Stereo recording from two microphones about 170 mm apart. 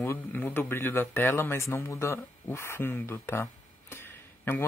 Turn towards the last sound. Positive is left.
turn(degrees=15)  # may be behind; listen again after turning